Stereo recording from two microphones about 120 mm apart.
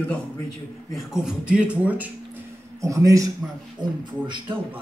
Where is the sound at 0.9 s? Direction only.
5° right (ahead or behind).